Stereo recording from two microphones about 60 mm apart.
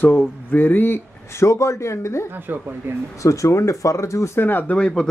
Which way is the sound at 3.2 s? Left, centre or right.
Left.